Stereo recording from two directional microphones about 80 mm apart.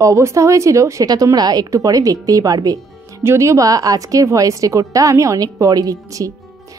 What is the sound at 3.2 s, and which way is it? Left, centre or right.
A woman's voice, right.